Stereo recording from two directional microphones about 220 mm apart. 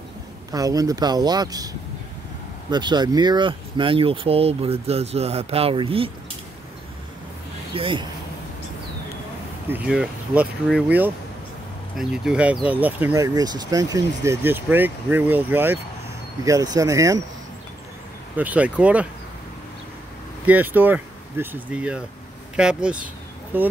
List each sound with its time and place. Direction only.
0.5 s speech: 15° right (ahead or behind)
7.7 s speech: 20° right (ahead or behind)
9.7 s speech: 5° right (ahead or behind)
18.4 s speech: 5° right (ahead or behind)
20.4 s speech: 10° right (ahead or behind)